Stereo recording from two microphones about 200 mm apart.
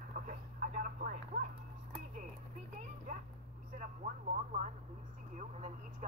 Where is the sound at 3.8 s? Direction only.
40° right (ahead or behind).